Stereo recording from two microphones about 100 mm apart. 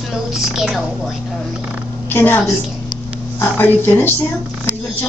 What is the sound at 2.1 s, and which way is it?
A woman's voice, 20° left (ahead or behind).